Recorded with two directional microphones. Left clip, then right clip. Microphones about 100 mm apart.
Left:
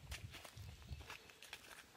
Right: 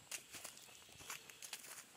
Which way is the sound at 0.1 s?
20° right (ahead or behind).